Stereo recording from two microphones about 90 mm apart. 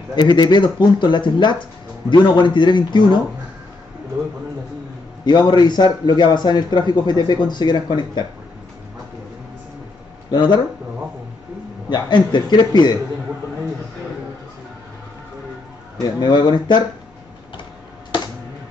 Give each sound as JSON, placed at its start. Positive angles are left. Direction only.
{"t": 0.1, "sound": "a man's voice", "side_deg": 55}
{"t": 5.2, "sound": "a man's voice", "side_deg": 55}
{"t": 10.3, "sound": "a man's voice", "side_deg": 60}
{"t": 11.9, "sound": "a man's voice", "side_deg": 55}
{"t": 16.0, "sound": "speech", "side_deg": 50}